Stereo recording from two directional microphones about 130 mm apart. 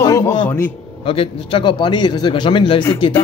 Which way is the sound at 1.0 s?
45° left (ahead or behind).